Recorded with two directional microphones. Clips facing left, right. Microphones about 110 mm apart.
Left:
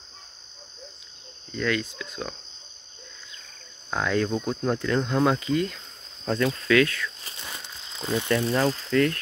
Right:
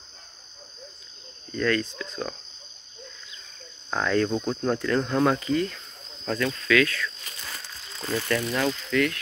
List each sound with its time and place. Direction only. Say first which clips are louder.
1.5 s speech: right 2 dB; 10° left (ahead or behind)
3.9 s speech: right 1 dB; 10° left (ahead or behind)
5.4 s speech: even; 20° left (ahead or behind)
7.2 s snake: even; 20° left (ahead or behind)